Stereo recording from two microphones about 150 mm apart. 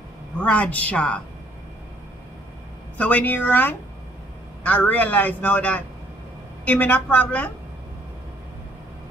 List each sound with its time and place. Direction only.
0.4 s a man's voice: 10° left (ahead or behind)
3.0 s a man's voice: 10° left (ahead or behind)